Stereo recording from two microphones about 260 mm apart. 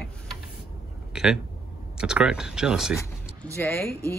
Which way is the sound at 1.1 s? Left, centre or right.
Centre.